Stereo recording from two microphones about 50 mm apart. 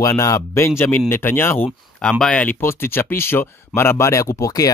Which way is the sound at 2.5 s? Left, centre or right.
Left.